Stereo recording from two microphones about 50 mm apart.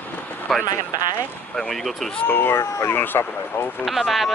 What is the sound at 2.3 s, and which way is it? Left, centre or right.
Speech, left.